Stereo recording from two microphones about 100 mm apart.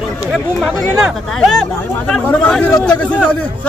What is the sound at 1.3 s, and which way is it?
A man's voice, 5° left (ahead or behind).